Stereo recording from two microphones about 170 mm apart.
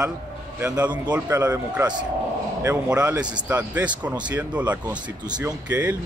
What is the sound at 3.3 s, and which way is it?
Speech, 10° right (ahead or behind).